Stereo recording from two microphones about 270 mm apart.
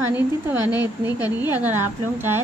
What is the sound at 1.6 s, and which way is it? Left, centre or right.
Speech, centre.